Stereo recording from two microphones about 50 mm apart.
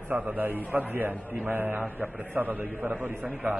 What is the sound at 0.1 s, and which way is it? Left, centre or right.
A man's voice, right.